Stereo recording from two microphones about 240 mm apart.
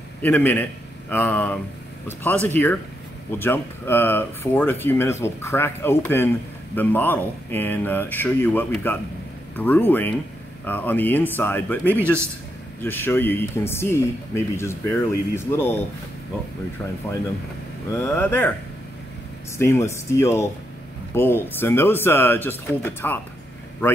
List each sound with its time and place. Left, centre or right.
0.2 s speech: centre
18.0 s speech: centre
19.6 s speech: centre